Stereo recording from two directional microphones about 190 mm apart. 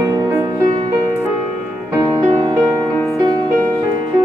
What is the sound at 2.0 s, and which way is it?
Music, 25° right (ahead or behind).